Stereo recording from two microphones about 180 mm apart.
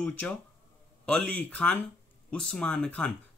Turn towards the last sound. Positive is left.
turn(degrees=5)  # may be behind; listen again after turning